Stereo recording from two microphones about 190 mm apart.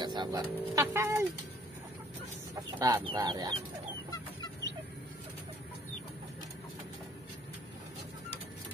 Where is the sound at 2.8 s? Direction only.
20° right (ahead or behind).